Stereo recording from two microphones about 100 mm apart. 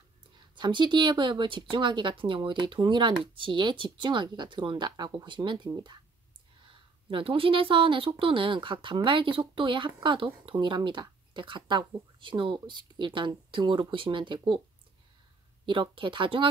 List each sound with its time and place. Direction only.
0.6 s speech: 50° right (ahead or behind)
6.7 s speech: 60° right (ahead or behind)
15.6 s speech: 55° right (ahead or behind)